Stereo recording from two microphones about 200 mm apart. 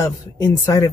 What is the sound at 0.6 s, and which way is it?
Speech, 15° left (ahead or behind).